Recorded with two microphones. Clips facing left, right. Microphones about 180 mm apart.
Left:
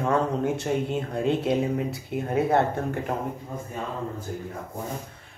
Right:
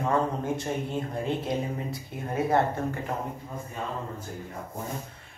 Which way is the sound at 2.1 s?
60° left (ahead or behind).